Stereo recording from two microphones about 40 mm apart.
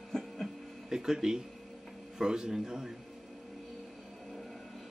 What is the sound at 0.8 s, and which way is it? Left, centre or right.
A man's voice, centre.